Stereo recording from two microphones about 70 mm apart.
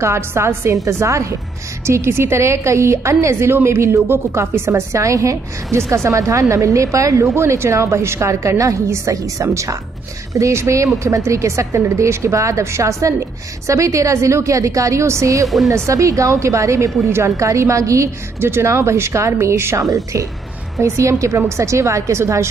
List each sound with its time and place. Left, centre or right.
0.0 s a woman's voice: right
15.4 s speech: centre
15.9 s a woman's voice: right